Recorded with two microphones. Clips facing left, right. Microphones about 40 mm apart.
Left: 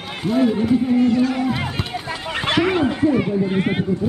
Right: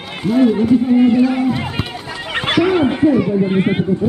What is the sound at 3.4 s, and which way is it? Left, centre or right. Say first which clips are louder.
Speech: right 4 dB; right.